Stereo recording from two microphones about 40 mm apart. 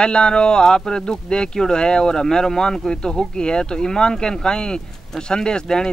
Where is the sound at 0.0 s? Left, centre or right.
Left.